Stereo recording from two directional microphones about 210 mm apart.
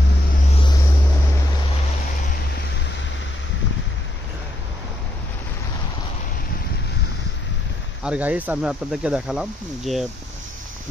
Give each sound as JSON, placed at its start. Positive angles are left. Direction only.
{"t": 0.5, "sound": "vehicle", "side_deg": 25}
{"t": 8.0, "sound": "speech", "side_deg": -5}